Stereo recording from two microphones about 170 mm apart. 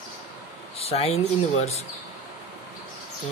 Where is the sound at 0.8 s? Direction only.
35° left (ahead or behind).